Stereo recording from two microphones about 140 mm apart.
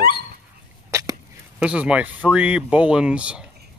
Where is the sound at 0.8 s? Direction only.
20° right (ahead or behind).